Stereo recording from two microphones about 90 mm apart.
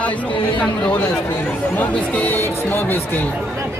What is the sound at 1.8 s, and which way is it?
Speech, 20° left (ahead or behind).